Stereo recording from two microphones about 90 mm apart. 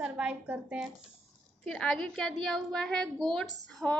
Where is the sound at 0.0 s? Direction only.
10° right (ahead or behind).